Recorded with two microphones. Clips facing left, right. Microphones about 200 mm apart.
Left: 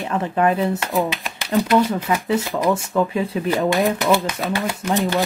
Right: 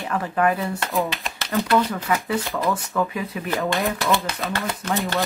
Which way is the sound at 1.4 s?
15° left (ahead or behind).